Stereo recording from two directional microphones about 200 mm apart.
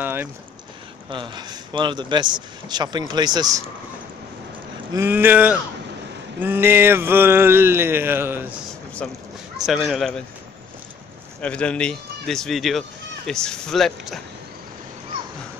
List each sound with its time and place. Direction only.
0.0 s speech: 10° right (ahead or behind)
1.1 s speech: 25° right (ahead or behind)
4.9 s a sound: 10° right (ahead or behind)
9.0 s speech: 5° left (ahead or behind)
11.4 s speech: 5° left (ahead or behind)